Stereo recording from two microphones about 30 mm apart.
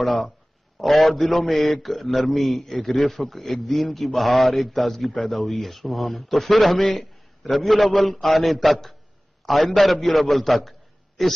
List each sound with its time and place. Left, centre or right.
0.7 s a man's voice: centre
3.1 s a man's voice: centre